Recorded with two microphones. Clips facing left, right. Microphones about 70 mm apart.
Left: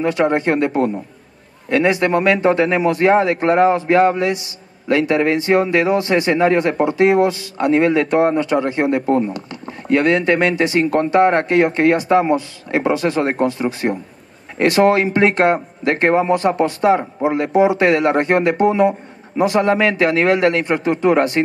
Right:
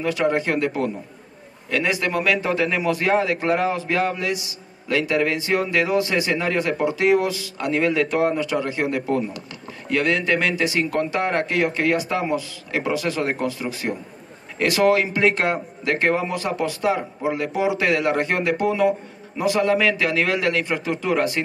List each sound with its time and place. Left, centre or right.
0.0 s a man's voice: left
0.8 s speech: left